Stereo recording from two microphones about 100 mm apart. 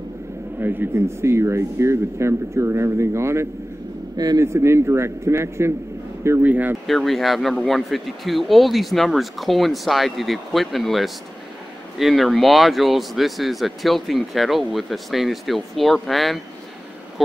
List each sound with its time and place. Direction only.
0.6 s speech: 20° right (ahead or behind)
6.9 s speech: centre (ahead or behind)